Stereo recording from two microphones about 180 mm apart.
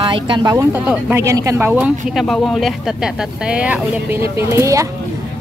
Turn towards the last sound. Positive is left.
turn(degrees=-15)  # may be behind; listen again after turning